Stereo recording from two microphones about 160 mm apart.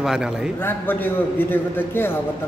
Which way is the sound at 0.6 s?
10° left (ahead or behind).